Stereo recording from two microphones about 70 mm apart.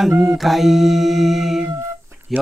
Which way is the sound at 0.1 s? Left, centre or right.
Right.